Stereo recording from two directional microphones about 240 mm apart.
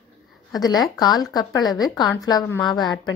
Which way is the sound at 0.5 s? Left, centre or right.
Centre.